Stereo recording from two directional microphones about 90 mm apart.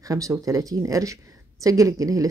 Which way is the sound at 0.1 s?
35° right (ahead or behind).